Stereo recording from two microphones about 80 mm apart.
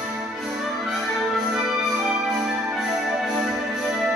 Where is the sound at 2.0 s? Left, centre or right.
Centre.